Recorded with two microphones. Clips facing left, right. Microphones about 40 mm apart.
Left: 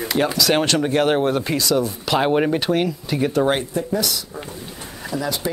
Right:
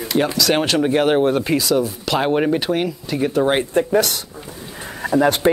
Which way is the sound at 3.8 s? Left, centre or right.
Right.